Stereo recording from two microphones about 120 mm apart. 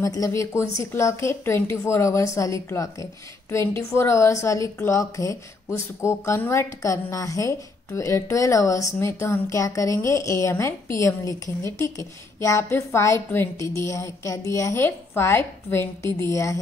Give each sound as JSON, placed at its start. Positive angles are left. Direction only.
{"t": 0.0, "sound": "a woman's voice", "side_deg": 25}